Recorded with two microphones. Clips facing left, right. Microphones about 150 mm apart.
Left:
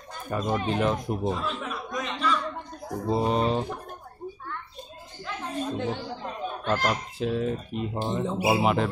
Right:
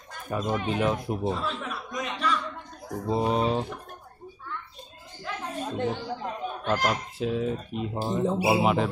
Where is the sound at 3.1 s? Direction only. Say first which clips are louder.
Even; 5° right (ahead or behind).